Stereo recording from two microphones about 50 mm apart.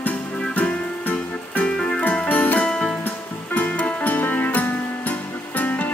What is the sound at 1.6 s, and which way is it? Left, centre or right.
Music, centre.